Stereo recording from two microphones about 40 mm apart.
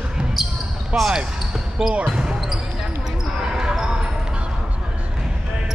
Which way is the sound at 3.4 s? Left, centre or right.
Centre.